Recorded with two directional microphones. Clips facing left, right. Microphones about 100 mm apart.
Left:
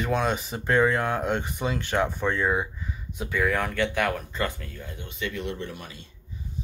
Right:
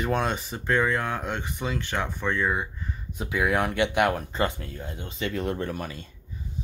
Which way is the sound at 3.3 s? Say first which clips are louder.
Right 1 dB; 10° right (ahead or behind).